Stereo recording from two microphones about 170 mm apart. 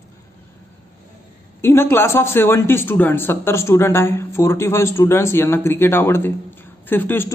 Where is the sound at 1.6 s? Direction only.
15° left (ahead or behind).